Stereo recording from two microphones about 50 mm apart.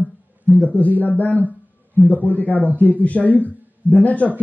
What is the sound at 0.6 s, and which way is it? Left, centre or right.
A man's voice, left.